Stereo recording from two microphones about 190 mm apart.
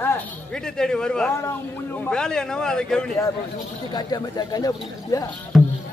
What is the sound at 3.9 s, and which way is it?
Speech, 20° left (ahead or behind).